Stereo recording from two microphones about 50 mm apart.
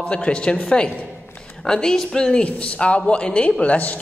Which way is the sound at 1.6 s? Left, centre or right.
Centre.